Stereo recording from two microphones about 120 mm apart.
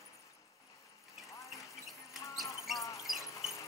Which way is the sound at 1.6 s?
25° left (ahead or behind).